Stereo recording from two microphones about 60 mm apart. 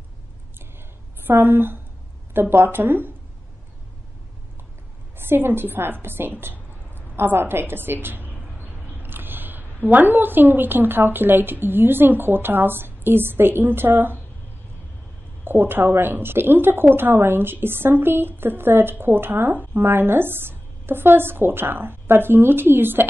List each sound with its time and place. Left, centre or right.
1.2 s a woman's voice: right
5.1 s a woman's voice: right
15.4 s a woman's voice: right